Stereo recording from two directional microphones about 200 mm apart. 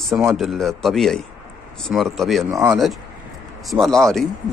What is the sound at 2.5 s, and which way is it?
Speech, 15° right (ahead or behind).